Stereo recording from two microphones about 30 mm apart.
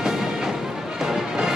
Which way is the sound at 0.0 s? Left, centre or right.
Centre.